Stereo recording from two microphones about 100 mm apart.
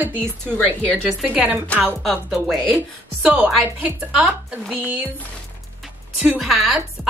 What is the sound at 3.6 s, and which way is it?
A woman's voice, 15° right (ahead or behind).